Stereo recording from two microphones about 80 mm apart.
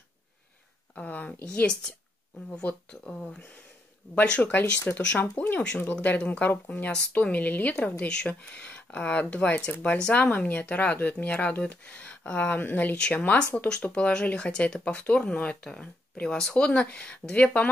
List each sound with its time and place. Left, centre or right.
0.9 s speech: centre
9.9 s speech: centre